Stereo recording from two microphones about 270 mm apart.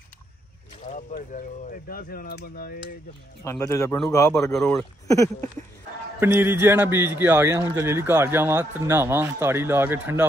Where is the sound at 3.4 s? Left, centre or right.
Centre.